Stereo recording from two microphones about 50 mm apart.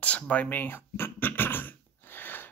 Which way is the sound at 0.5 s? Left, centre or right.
Left.